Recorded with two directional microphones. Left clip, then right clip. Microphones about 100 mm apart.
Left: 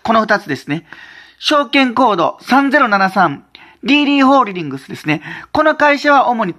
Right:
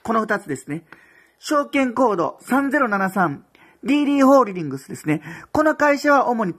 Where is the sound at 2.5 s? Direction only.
10° right (ahead or behind).